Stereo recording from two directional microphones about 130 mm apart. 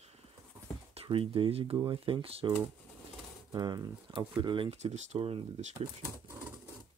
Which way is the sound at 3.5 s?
30° right (ahead or behind).